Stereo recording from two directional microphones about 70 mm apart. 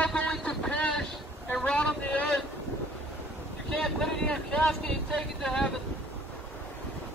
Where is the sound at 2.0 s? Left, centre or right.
Left.